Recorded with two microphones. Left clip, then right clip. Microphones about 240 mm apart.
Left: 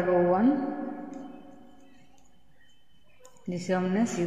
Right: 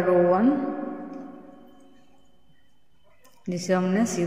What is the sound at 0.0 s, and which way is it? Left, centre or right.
Speech, right.